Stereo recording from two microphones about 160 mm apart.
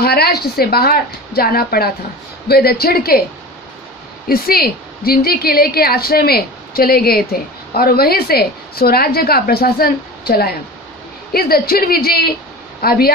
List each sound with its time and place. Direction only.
0.0 s a woman's voice: 80° left
4.3 s a woman's voice: 70° left (ahead or behind)